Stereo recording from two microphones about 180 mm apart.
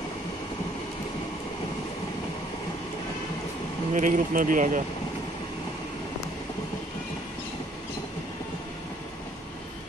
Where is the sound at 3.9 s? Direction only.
45° right (ahead or behind).